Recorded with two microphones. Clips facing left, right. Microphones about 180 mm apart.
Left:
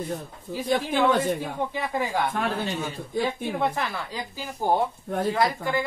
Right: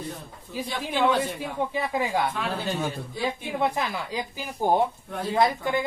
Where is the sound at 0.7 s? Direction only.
50° left (ahead or behind).